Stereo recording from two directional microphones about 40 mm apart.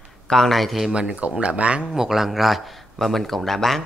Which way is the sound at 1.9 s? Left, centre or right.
Centre.